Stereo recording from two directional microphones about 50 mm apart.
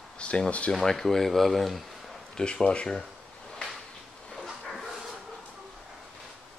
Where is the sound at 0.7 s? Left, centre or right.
Centre.